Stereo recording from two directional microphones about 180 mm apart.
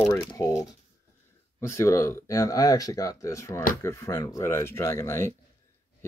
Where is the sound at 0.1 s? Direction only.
20° left (ahead or behind).